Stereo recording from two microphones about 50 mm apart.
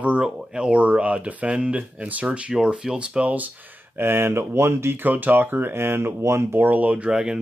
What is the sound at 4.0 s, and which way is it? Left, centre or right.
Speech, right.